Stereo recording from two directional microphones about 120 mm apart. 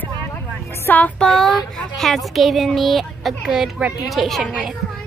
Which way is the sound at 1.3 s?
5° left (ahead or behind).